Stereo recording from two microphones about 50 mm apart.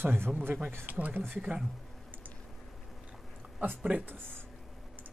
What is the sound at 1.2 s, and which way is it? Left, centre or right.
Speech, right.